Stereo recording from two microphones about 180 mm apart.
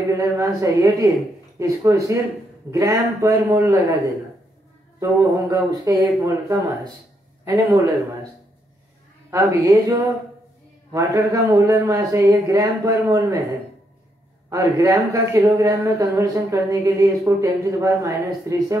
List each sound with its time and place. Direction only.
0.2 s speech: 15° right (ahead or behind)
9.3 s speech: 15° right (ahead or behind)
14.5 s speech: 20° right (ahead or behind)